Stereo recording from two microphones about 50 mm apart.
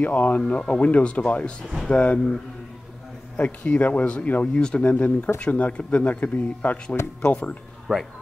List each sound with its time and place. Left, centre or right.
0.0 s speech: left
3.3 s speech: left
7.9 s speech: centre